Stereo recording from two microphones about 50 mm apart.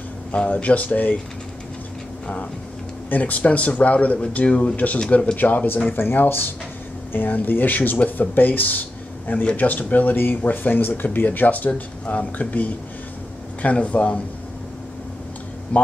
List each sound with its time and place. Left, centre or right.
0.5 s speech: left
3.1 s speech: left
15.7 s a man's voice: left